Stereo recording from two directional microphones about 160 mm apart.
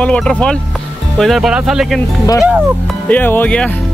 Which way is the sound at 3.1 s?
10° left (ahead or behind).